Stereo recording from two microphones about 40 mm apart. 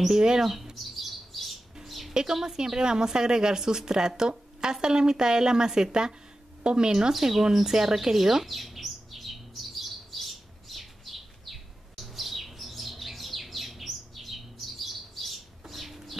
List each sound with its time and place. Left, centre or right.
0.1 s a woman's voice: centre
0.4 s speech: centre
0.9 s bird: centre
1.9 s a sound: centre
2.3 s a woman's voice: centre
8.5 s bird: centre